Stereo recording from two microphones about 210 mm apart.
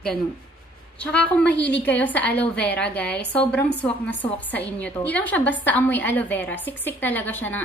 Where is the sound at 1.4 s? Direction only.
55° left (ahead or behind).